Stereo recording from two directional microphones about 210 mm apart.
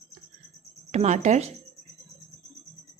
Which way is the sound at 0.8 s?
35° right (ahead or behind).